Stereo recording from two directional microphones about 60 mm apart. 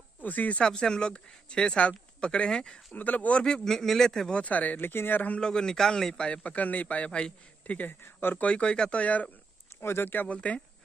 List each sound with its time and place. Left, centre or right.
0.2 s speech: left
0.6 s a man's voice: centre
2.9 s a man's voice: left
5.4 s a man's voice: centre
8.0 s speech: left
8.4 s a man's voice: left
9.8 s speech: left
10.2 s a man's voice: left